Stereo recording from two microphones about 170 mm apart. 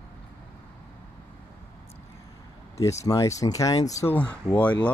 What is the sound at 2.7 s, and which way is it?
Speech, 20° left (ahead or behind).